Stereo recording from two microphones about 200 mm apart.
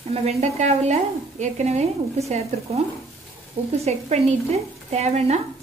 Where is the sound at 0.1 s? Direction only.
30° right (ahead or behind).